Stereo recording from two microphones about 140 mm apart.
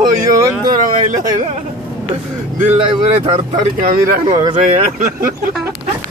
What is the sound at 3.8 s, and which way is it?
Speech, 85° right.